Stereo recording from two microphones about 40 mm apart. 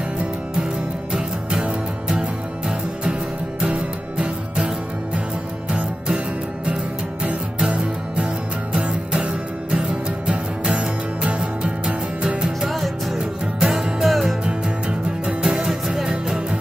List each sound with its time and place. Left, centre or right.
1.1 s music: centre
3.6 s music: right
5.7 s music: right
12.4 s music: centre
13.6 s music: centre
14.0 s music: centre
14.4 s music: right
15.4 s music: centre